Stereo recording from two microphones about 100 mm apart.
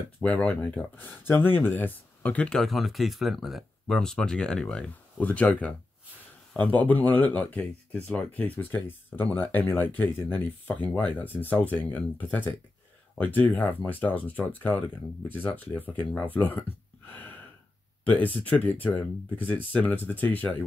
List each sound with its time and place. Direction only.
0.2 s speech: 10° left (ahead or behind)